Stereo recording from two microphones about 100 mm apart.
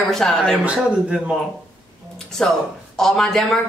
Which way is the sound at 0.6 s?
10° right (ahead or behind).